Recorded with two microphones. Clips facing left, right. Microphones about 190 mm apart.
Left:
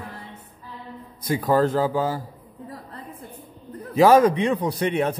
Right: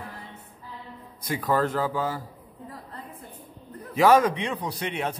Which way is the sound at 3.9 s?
35° left (ahead or behind).